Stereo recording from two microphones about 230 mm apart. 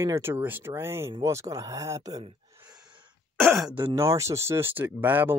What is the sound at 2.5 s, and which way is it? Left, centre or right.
Sigh, centre.